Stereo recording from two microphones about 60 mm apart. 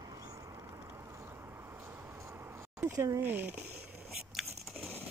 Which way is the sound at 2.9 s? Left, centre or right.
Right.